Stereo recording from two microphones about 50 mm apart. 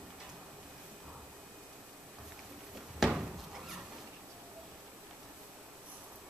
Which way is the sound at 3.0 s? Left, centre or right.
Centre.